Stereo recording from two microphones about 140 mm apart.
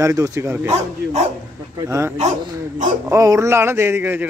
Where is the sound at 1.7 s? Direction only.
20° right (ahead or behind).